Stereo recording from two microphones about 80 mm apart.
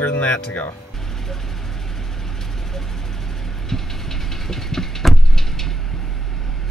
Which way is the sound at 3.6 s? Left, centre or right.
Centre.